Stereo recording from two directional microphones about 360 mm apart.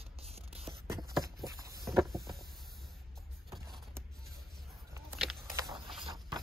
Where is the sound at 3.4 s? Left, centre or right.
Centre.